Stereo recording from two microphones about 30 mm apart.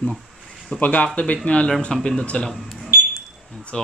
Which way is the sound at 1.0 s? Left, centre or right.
Left.